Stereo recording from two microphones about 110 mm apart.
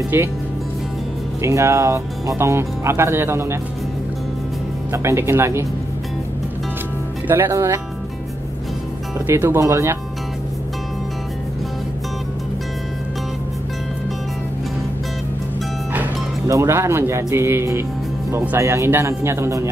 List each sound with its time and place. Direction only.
0.1 s speech: 20° right (ahead or behind)
1.4 s speech: 25° right (ahead or behind)
4.9 s speech: 25° right (ahead or behind)
7.2 s speech: 20° right (ahead or behind)
9.3 s speech: 25° right (ahead or behind)
16.4 s speech: 25° right (ahead or behind)